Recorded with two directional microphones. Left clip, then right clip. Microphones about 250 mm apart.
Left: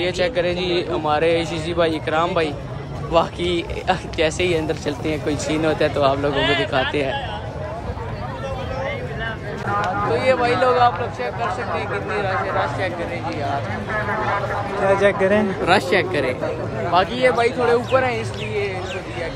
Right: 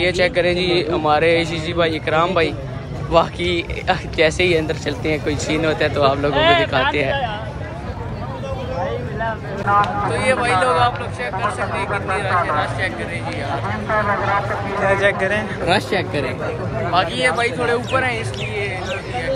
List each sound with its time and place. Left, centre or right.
0.0 s speech: centre
6.3 s speech: centre
6.9 s speech: centre
9.7 s speech: centre
10.1 s speech: centre
11.7 s speech: centre
14.8 s speech: left
16.9 s a man's voice: left
17.3 s speech: centre